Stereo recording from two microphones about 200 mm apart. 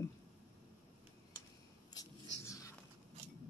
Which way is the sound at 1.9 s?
15° left (ahead or behind).